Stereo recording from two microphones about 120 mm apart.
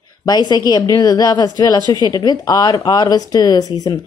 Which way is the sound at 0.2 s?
35° left (ahead or behind).